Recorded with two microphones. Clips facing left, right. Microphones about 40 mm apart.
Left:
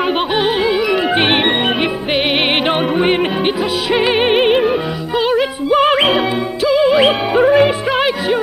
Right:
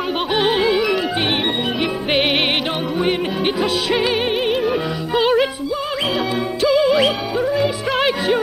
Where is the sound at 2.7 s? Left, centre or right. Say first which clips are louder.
Left 6 dB; left.